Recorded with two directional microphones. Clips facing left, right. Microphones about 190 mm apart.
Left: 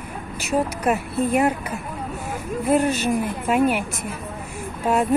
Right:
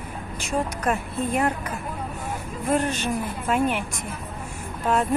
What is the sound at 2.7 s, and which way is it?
Speech, 10° left (ahead or behind).